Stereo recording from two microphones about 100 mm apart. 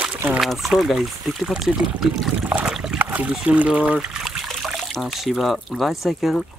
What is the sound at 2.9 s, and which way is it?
Speech, 15° right (ahead or behind).